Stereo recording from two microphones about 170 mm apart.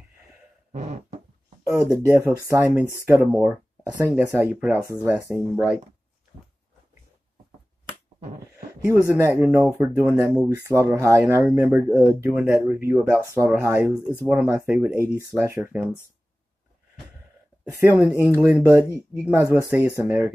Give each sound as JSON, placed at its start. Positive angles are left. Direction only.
{"t": 0.7, "sound": "beatboxing", "side_deg": -45}
{"t": 1.8, "sound": "speech", "side_deg": -15}
{"t": 9.1, "sound": "speech", "side_deg": -15}
{"t": 17.6, "sound": "speech", "side_deg": -15}